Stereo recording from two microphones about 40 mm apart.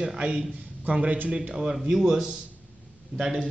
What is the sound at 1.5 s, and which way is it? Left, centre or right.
Speech, centre.